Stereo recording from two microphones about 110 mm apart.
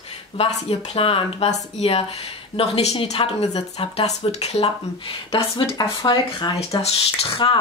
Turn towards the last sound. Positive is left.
turn(degrees=55)  # may be behind; listen again after turning